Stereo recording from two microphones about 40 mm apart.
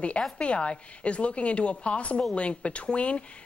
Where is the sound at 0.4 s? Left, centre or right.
Left.